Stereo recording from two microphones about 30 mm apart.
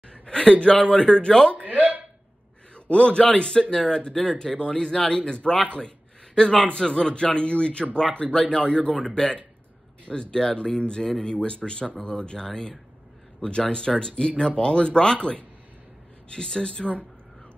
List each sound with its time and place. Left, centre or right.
0.1 s speech: left
1.5 s speech: right
2.7 s a man's voice: left
5.8 s a sound: left
7.0 s speech: left
16.3 s speech: left